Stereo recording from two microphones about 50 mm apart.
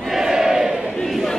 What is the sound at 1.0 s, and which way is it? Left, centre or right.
Crowd, centre.